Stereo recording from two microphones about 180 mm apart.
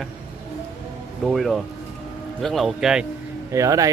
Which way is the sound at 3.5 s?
20° right (ahead or behind).